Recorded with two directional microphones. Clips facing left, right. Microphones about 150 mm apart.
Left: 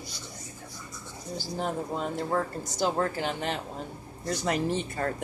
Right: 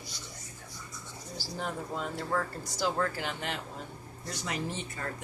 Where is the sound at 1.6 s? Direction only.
20° left (ahead or behind).